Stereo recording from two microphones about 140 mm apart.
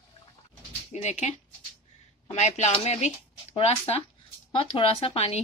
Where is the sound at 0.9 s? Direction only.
55° left (ahead or behind).